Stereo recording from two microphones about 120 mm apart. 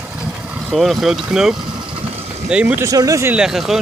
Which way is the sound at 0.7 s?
Centre (ahead or behind).